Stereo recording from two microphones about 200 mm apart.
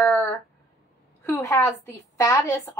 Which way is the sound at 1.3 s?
15° left (ahead or behind).